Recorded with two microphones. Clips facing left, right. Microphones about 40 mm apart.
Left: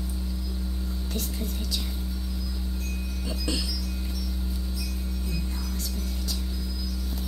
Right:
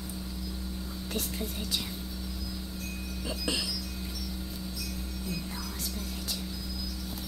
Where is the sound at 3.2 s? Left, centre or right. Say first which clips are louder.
Left 1 dB; centre.